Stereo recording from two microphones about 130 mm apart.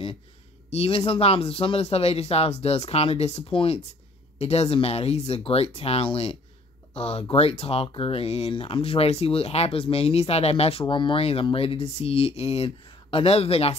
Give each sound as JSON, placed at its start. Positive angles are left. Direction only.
{"t": 0.7, "sound": "speech", "side_deg": 50}